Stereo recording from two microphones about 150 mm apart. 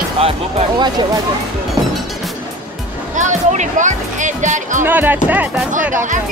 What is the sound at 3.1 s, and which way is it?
Speech, 55° right (ahead or behind).